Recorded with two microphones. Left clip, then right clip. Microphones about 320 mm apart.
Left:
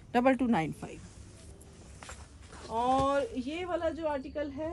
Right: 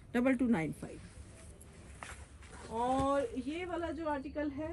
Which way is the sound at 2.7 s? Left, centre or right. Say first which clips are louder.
Left 4 dB; centre.